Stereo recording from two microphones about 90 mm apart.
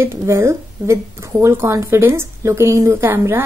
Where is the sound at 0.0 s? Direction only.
30° right (ahead or behind).